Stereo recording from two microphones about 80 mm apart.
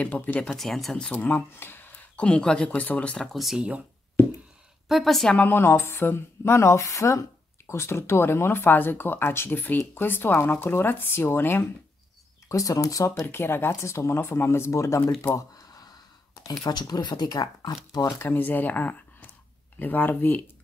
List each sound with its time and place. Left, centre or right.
0.0 s speech: left
0.5 s speech: centre
1.1 s speech: left
3.3 s speech: centre
4.8 s speech: centre
5.3 s speech: left
12.4 s speech: left
13.3 s speech: left
16.4 s speech: left
18.0 s speech: left